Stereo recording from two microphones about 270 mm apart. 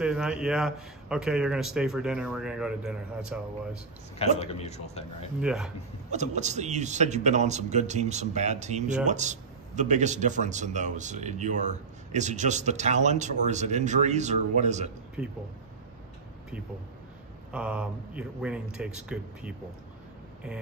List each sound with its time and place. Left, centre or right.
0.0 s a man's voice: centre
4.2 s a man's voice: left
5.4 s a man's voice: centre
6.1 s a man's voice: right
17.5 s a man's voice: centre